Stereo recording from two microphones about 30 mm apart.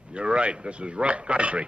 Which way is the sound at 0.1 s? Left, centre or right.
Right.